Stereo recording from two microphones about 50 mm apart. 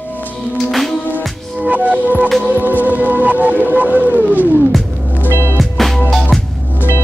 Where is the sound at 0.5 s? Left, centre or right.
Centre.